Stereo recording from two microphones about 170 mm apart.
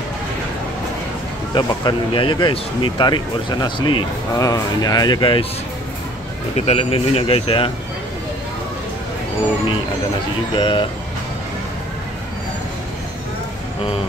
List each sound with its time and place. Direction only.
1.5 s speech: 25° left (ahead or behind)
6.5 s speech: 40° left (ahead or behind)
10.5 s speech: 30° left (ahead or behind)